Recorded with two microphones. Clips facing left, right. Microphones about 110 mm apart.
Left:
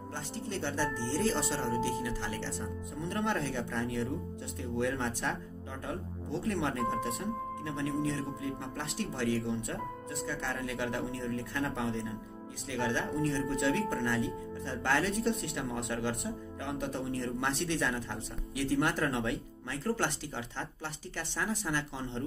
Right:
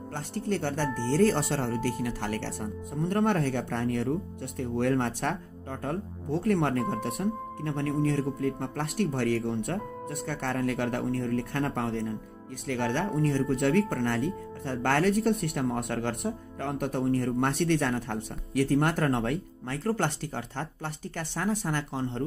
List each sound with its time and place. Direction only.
0.1 s speech: 60° right (ahead or behind)
6.4 s speech: 65° right (ahead or behind)
18.7 s speech: 50° right (ahead or behind)
20.2 s speech: 50° right (ahead or behind)